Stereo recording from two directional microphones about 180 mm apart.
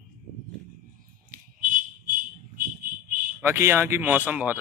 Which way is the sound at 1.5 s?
45° right (ahead or behind).